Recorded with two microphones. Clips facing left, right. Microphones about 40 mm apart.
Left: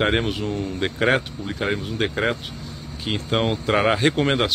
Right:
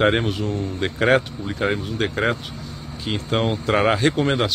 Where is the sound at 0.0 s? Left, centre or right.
Centre.